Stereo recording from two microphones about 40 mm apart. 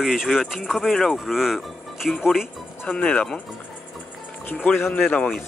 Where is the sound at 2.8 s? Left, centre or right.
Left.